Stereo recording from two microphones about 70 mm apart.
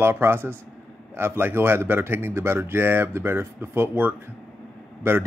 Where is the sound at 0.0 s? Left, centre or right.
Right.